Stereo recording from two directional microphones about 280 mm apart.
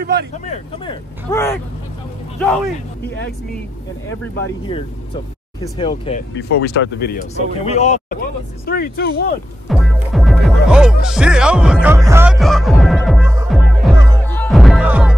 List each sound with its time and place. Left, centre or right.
0.0 s speech: right
1.3 s speech: centre
2.3 s speech: centre
5.6 s speech: centre
6.3 s speech: left
9.7 s music: centre